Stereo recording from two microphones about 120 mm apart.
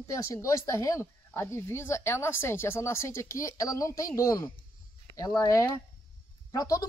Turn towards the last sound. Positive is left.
turn(degrees=30)  # may be behind; listen again after turning